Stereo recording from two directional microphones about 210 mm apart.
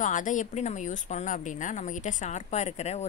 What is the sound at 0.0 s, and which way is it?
A woman's voice, 35° left (ahead or behind).